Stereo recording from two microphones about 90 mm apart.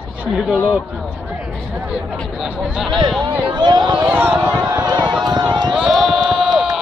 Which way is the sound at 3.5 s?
55° right (ahead or behind).